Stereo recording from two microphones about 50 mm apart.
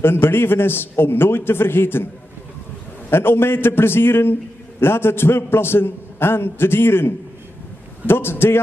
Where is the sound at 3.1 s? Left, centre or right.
Left.